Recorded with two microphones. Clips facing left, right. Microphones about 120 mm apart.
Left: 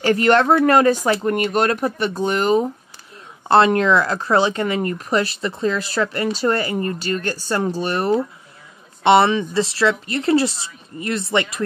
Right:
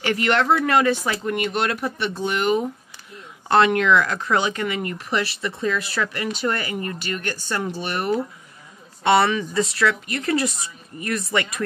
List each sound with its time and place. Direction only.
0.0 s speech: 40° left (ahead or behind)
5.5 s speech: 30° left (ahead or behind)
9.0 s speech: 25° left (ahead or behind)